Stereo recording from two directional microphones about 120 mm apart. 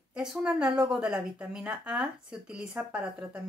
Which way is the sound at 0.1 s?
5° right (ahead or behind).